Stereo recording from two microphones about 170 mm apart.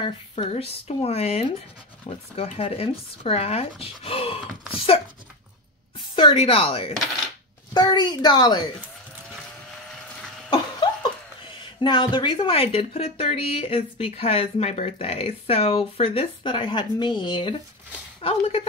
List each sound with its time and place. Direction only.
0.0 s a woman's voice: 30° left (ahead or behind)
10.5 s a sound: 25° left (ahead or behind)
11.6 s speech: 30° left (ahead or behind)